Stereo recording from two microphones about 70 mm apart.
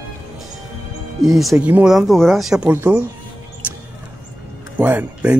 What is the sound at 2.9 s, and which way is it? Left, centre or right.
Speech, centre.